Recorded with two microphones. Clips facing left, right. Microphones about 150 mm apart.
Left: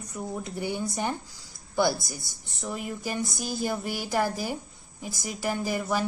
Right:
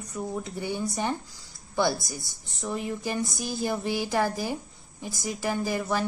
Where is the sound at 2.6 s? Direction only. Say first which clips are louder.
Right 3 dB; 10° left (ahead or behind).